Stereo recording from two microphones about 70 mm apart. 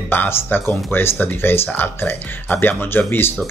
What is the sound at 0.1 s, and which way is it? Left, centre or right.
Speech, left.